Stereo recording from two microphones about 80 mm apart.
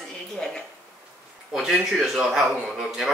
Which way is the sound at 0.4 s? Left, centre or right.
Centre.